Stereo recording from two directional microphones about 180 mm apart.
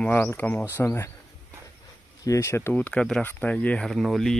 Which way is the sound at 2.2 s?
15° left (ahead or behind).